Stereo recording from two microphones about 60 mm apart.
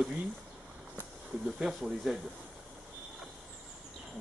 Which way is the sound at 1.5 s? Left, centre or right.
Centre.